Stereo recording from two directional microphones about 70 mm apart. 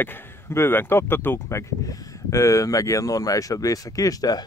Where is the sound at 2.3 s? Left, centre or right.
Left.